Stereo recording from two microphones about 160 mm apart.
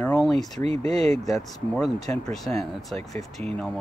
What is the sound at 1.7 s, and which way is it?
Speech, centre (ahead or behind).